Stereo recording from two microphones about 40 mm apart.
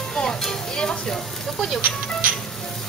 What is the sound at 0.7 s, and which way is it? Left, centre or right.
Frying, centre.